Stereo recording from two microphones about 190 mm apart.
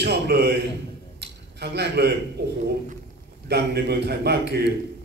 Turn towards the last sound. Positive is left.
turn(degrees=-60)  # may be behind; listen again after turning